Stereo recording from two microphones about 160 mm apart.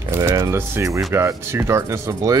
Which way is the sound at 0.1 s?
15° right (ahead or behind).